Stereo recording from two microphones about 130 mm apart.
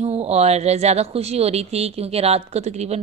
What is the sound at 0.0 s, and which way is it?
Speech, 55° right (ahead or behind).